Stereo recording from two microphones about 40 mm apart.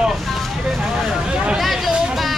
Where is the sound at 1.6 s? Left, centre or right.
Centre.